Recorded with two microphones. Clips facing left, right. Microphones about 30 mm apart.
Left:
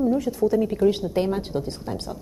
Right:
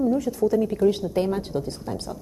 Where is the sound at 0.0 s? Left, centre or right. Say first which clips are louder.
Even; left.